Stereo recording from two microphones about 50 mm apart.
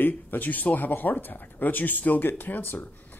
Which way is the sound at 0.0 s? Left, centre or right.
Left.